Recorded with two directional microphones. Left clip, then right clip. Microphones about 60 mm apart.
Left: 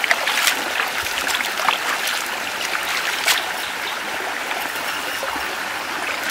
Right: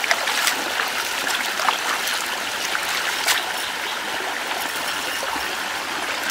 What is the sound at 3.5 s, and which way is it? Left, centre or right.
Stream, right.